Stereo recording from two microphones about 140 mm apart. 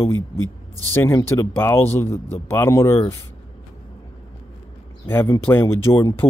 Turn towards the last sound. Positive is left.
turn(degrees=20)  # may be behind; listen again after turning